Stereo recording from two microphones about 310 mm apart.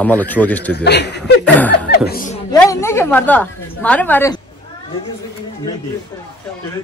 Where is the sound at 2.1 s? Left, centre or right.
Left.